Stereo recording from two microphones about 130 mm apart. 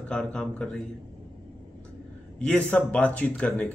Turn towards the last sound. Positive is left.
turn(degrees=10)  # may be behind; listen again after turning